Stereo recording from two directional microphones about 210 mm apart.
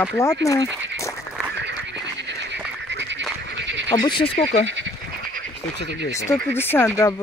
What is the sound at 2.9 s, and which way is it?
Goose, 60° right (ahead or behind).